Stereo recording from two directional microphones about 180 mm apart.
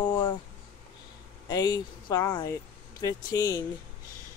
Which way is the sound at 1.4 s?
20° left (ahead or behind).